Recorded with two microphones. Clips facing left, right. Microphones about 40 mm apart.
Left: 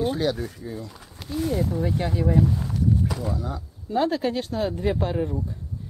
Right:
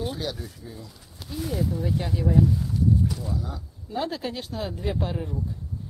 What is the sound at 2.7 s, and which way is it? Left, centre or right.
Walk, left.